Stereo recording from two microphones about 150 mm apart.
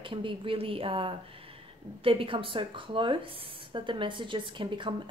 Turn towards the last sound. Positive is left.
turn(degrees=-35)  # may be behind; listen again after turning